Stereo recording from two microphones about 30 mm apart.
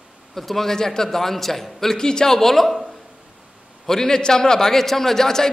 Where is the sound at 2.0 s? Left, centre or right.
Left.